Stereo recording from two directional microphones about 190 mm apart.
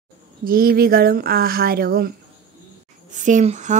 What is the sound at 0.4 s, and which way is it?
Speech, 50° right (ahead or behind).